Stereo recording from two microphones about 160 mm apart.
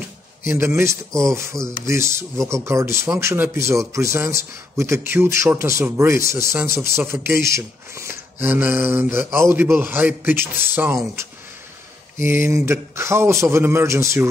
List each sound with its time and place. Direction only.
0.6 s speech: 15° right (ahead or behind)
12.2 s speech: 15° right (ahead or behind)